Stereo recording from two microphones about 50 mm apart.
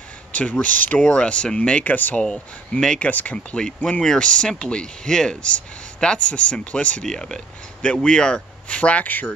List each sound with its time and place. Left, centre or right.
0.4 s speech: left
1.9 s speech: left
2.2 s speech: centre
3.0 s speech: left
3.5 s speech: centre
7.1 s speech: centre
7.8 s speech: left